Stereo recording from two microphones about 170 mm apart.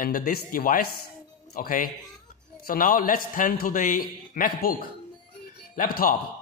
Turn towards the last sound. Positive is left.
turn(degrees=55)  # may be behind; listen again after turning